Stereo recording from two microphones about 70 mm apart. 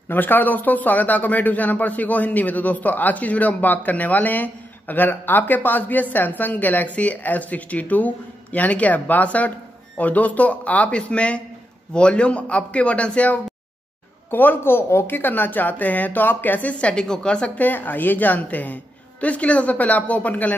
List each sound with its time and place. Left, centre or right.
0.1 s a man's voice: left